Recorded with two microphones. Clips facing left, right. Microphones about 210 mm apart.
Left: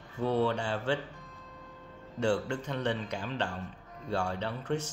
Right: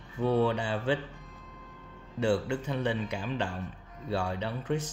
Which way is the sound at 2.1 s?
15° right (ahead or behind).